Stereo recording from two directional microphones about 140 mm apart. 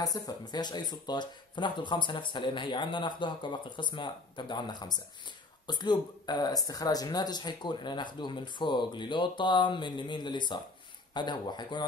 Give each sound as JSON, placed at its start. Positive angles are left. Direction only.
{"t": 0.0, "sound": "speech", "side_deg": 30}